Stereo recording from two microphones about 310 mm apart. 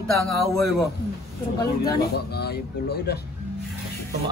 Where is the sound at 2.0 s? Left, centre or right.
Left.